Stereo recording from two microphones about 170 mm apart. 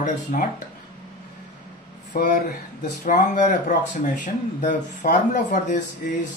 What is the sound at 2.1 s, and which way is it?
Speech, 50° left (ahead or behind).